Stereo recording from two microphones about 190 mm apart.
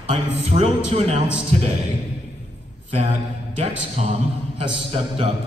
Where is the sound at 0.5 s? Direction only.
35° right (ahead or behind).